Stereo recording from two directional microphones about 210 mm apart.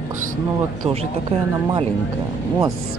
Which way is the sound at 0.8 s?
30° right (ahead or behind).